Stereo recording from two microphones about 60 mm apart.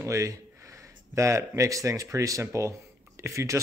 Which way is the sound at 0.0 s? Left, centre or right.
Right.